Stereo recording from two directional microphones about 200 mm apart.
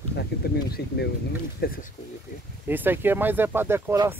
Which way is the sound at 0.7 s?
55° left (ahead or behind).